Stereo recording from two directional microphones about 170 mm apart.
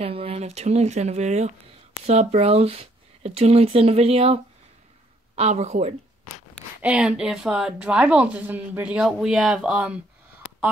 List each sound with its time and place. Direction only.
0.0 s speech: 35° right (ahead or behind)
6.8 s speech: 5° right (ahead or behind)